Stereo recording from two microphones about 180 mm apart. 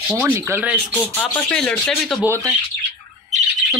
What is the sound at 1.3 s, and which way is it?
Speech, 5° left (ahead or behind).